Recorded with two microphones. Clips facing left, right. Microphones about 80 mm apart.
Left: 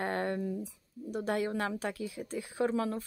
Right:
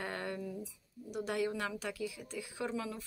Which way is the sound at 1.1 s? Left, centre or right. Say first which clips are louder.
Left 3 dB; left.